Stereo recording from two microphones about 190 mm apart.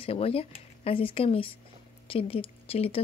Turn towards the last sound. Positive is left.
turn(degrees=30)  # may be behind; listen again after turning